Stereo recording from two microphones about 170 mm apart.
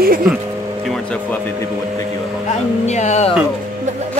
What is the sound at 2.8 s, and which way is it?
Speech, 40° left (ahead or behind).